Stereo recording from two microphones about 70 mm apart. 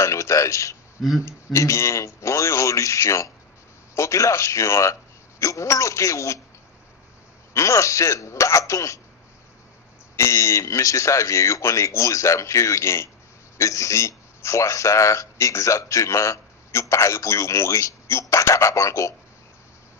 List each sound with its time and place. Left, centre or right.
0.0 s a sound: left
1.2 s speech: left
7.5 s speech: left
10.1 s speech: left